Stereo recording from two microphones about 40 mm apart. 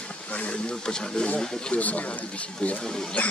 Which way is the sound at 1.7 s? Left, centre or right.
Left.